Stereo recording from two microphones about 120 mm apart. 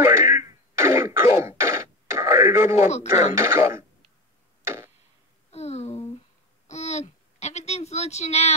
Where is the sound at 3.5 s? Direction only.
25° right (ahead or behind).